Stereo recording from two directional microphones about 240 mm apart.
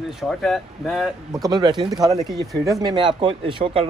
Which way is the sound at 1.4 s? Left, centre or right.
Centre.